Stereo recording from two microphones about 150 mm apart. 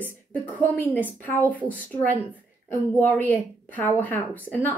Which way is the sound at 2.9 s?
10° left (ahead or behind).